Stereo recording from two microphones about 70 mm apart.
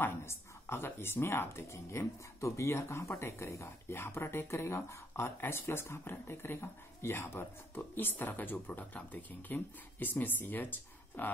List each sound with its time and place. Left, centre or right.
0.0 s speech: left